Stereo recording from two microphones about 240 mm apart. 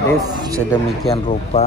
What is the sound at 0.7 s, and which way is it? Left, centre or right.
Speech, centre.